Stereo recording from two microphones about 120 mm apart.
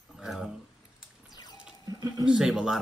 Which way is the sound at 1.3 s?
35° left (ahead or behind).